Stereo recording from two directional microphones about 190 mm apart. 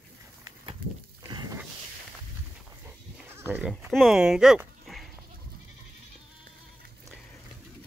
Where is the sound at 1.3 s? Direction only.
20° right (ahead or behind).